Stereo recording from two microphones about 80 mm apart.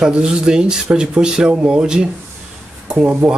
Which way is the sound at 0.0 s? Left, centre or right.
Centre.